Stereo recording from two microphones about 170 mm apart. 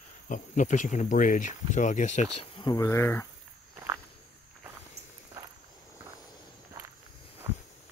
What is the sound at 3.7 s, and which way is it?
Walk, 15° right (ahead or behind).